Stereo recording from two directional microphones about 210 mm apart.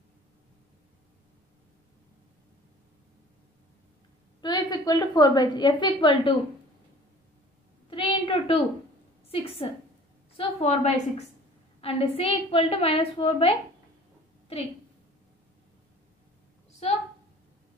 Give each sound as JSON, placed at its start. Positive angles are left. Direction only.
{"t": 4.4, "sound": "a woman's voice", "side_deg": 20}
{"t": 7.9, "sound": "a sound", "side_deg": 25}
{"t": 9.3, "sound": "a woman's voice", "side_deg": 25}
{"t": 16.8, "sound": "a woman's voice", "side_deg": 30}